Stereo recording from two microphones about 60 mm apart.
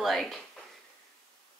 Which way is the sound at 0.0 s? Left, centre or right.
Centre.